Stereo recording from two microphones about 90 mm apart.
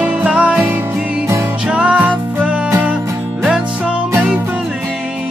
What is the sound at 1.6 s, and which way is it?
Music, 10° right (ahead or behind).